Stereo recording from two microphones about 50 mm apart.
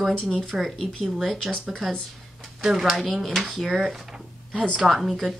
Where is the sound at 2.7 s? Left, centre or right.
Centre.